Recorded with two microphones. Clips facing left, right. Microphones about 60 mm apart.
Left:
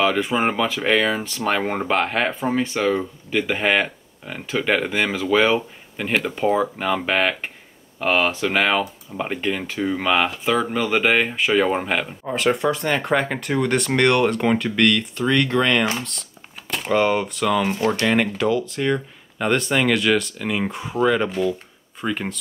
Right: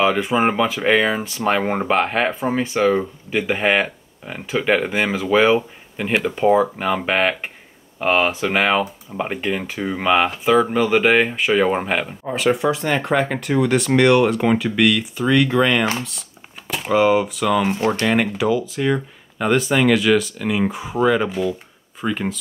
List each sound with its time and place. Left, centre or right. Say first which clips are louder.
0.0 s speech: right 2 dB; centre
17.7 s speech: right 1 dB; right
18.0 s speech: right 1 dB; centre